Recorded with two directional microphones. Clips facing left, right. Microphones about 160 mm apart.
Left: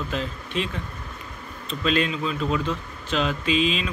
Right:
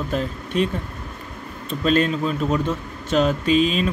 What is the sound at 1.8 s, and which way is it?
Speech, 45° right (ahead or behind).